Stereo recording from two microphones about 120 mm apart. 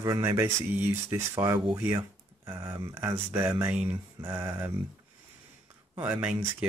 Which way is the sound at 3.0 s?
40° right (ahead or behind).